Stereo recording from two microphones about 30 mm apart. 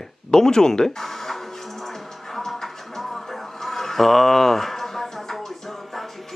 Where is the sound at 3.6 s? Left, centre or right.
Centre.